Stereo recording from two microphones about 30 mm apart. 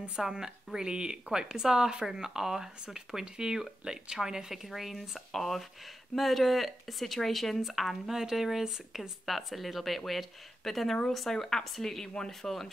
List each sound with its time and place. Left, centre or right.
0.2 s speech: centre
0.7 s speech: right
4.6 s speech: centre
7.6 s a woman's voice: centre